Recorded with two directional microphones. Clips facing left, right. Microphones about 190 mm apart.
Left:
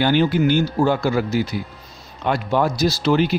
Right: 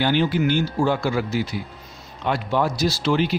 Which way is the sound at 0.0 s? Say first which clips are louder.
Left 3 dB; 45° left (ahead or behind).